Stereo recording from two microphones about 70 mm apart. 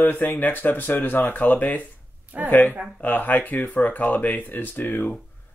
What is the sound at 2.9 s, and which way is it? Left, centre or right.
Speech, left.